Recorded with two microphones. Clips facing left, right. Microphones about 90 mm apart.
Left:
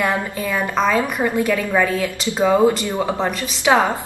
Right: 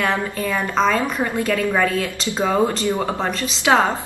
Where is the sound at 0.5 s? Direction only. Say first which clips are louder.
Even; 10° left (ahead or behind).